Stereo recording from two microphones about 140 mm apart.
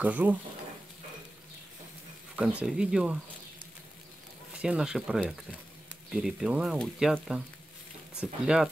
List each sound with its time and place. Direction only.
0.0 s speech: 10° right (ahead or behind)
2.3 s speech: 5° right (ahead or behind)
4.6 s speech: 5° right (ahead or behind)